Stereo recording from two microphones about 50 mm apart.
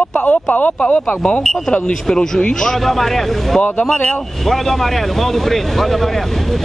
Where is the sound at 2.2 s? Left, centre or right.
Centre.